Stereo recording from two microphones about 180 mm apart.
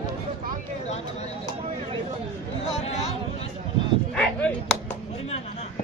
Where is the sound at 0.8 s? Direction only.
35° left (ahead or behind).